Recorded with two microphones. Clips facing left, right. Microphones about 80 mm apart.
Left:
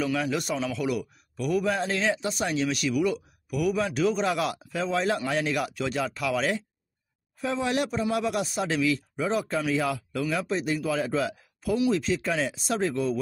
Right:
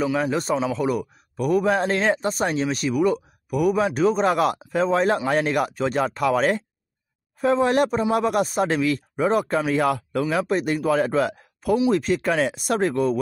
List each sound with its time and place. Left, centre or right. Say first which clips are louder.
0.0 s speech: right 5 dB; right